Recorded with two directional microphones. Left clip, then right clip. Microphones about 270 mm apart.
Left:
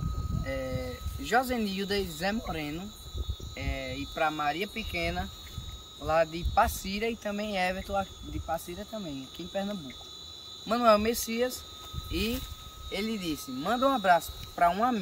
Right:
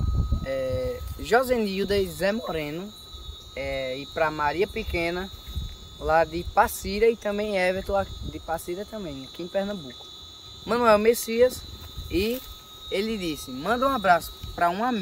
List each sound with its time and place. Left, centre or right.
0.5 s speech: centre